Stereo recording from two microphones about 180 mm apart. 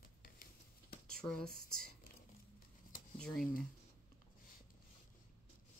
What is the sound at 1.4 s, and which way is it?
Speech, 55° right (ahead or behind).